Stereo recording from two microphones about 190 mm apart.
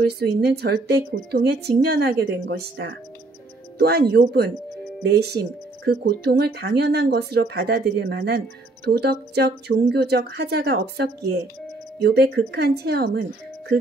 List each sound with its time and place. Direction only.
0.0 s speech: 60° right (ahead or behind)